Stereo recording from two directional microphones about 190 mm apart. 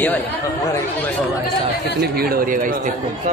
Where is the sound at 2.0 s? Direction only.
55° right (ahead or behind).